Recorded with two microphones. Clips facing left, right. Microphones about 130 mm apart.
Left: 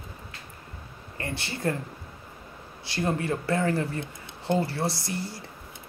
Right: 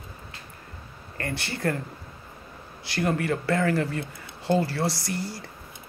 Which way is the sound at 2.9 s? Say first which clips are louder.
Right 2 dB; 25° left (ahead or behind).